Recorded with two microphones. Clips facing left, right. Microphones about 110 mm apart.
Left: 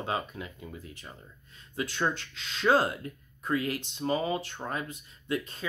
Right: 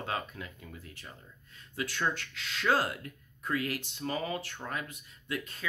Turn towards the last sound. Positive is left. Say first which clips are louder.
# left 5 dB
turn(degrees=25)  # may be behind; listen again after turning